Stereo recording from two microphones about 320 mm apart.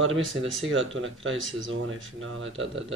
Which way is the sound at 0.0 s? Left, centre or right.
Right.